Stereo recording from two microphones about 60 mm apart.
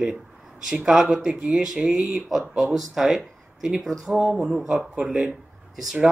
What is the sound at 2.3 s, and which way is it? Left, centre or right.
Speech, centre.